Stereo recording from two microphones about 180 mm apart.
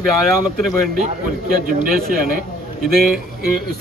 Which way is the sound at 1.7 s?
50° right (ahead or behind).